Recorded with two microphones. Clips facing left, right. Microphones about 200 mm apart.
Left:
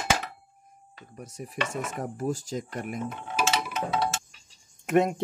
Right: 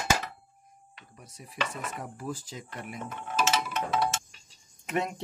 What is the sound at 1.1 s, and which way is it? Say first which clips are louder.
Speech: left 3 dB; 45° left (ahead or behind).